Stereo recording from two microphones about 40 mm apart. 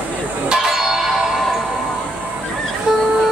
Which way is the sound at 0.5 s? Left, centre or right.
Centre.